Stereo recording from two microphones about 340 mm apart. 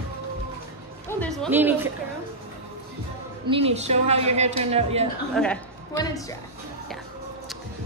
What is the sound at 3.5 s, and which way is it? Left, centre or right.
A woman's voice, centre.